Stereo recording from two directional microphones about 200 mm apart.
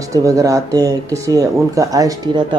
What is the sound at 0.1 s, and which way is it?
Speech, 15° right (ahead or behind).